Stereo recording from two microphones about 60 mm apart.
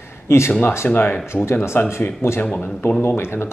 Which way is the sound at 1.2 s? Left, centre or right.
Left.